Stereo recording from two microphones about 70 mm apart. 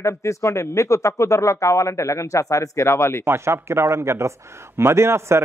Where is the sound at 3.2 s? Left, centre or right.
Right.